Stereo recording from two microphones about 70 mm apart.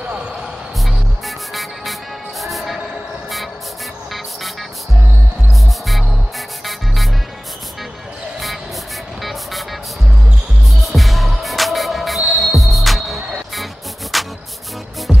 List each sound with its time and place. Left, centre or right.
0.8 s music: centre
9.2 s vehicle: centre
10.8 s music: centre